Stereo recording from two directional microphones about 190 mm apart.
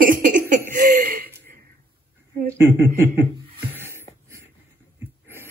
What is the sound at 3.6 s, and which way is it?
Music, 10° right (ahead or behind).